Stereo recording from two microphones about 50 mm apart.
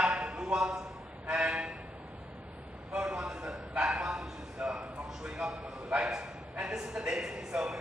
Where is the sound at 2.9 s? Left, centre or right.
Centre.